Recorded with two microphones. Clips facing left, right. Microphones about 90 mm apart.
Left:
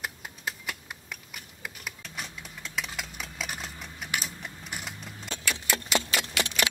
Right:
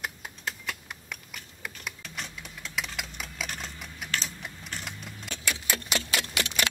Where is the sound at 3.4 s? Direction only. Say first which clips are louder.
Left 1 dB; 5° left (ahead or behind).